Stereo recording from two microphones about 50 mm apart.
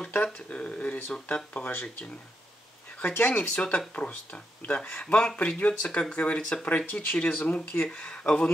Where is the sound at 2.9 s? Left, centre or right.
Left.